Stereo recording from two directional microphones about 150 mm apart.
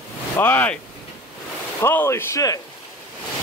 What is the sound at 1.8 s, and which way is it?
Speech, 15° left (ahead or behind).